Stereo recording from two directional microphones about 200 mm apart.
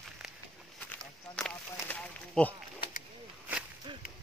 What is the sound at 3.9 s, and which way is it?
Whip, 25° right (ahead or behind).